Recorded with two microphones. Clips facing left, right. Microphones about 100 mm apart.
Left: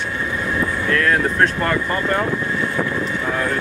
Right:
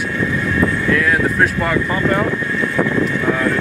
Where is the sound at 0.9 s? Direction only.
5° right (ahead or behind).